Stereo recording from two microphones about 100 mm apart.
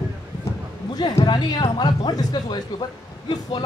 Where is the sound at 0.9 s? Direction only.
45° left (ahead or behind).